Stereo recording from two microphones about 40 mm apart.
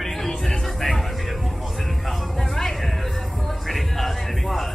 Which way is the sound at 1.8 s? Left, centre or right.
Centre.